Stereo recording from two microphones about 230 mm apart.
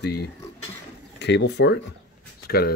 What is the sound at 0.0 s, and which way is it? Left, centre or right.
Speech, left.